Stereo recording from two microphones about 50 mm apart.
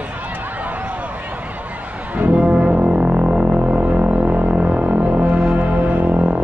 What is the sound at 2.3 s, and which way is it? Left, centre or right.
Music, right.